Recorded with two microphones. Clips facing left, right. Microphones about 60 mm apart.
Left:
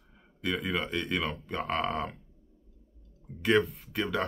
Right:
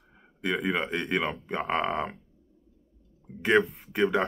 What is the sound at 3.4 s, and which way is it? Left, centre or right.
Speech, right.